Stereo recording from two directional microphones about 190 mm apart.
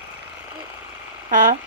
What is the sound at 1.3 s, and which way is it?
Speech, 45° right (ahead or behind).